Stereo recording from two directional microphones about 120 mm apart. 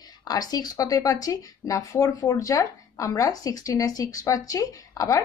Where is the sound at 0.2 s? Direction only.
30° left (ahead or behind).